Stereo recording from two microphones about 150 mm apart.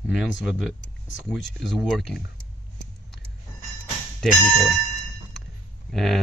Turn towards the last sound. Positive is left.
turn(degrees=0)  # may be behind; listen again after turning